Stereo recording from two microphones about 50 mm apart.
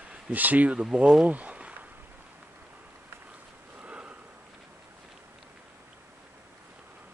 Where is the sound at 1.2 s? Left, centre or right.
Right.